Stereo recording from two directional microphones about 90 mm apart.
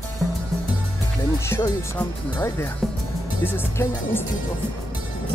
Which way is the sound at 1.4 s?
30° left (ahead or behind).